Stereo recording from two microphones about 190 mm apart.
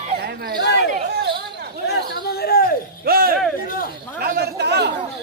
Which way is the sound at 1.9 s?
55° left (ahead or behind).